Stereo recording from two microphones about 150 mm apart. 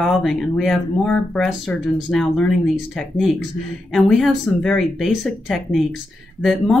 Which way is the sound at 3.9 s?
Centre (ahead or behind).